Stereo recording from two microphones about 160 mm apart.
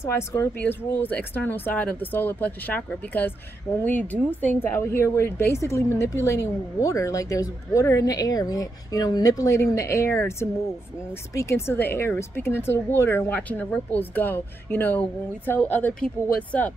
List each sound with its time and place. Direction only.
0.0 s a woman's voice: 15° left (ahead or behind)